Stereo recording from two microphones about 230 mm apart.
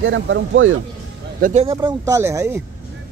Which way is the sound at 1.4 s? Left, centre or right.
Right.